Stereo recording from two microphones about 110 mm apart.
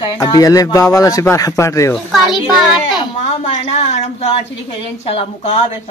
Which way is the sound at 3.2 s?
75° left (ahead or behind).